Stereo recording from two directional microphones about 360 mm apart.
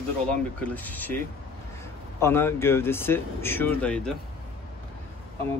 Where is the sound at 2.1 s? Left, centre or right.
Centre.